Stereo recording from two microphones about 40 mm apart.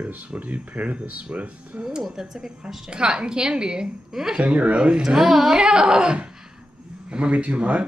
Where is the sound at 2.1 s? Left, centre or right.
Centre.